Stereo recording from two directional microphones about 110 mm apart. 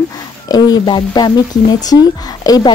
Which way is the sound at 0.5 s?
40° left (ahead or behind).